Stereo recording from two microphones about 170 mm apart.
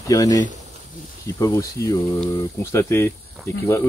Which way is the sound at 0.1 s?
20° left (ahead or behind).